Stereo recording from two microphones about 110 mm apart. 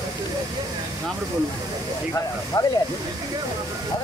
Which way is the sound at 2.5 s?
30° left (ahead or behind).